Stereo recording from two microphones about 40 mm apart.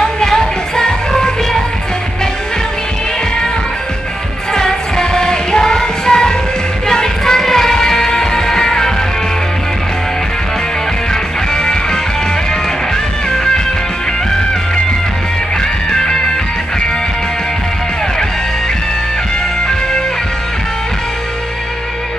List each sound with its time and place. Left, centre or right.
0.0 s music: centre
4.6 s music: centre
11.5 s music: centre
15.9 s music: centre